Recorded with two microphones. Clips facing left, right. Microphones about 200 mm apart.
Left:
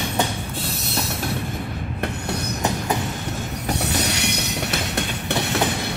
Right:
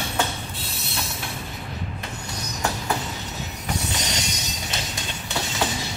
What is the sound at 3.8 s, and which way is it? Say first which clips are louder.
Train: left 6 dB; 65° left (ahead or behind).